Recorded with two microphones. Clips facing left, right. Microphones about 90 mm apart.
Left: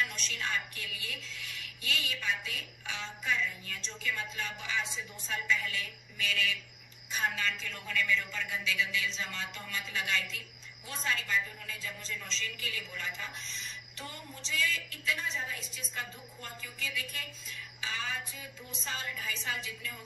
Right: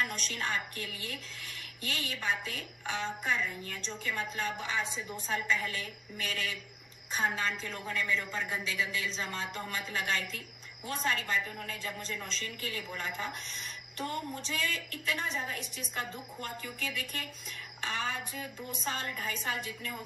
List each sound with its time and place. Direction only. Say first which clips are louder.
0.0 s a woman's voice: right 1 dB; 45° right (ahead or behind)